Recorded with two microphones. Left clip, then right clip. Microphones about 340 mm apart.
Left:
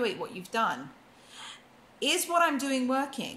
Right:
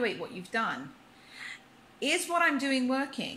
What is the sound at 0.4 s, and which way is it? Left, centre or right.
Speech, centre.